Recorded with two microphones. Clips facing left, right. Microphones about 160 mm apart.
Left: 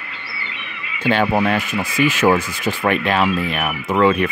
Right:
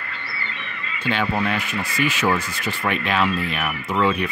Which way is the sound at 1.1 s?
55° left (ahead or behind).